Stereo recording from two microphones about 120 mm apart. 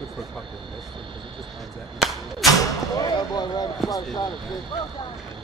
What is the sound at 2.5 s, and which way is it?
Speech, 30° left (ahead or behind).